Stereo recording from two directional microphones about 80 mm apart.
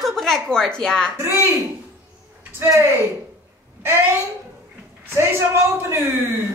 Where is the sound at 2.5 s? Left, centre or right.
Right.